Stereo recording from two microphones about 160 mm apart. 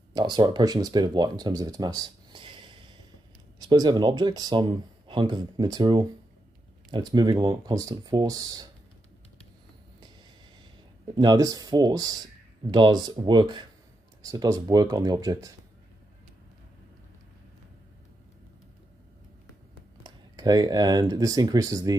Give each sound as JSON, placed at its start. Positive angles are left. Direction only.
{"t": 0.1, "sound": "speech", "side_deg": -30}
{"t": 11.1, "sound": "speech", "side_deg": -25}
{"t": 20.0, "sound": "speech", "side_deg": -25}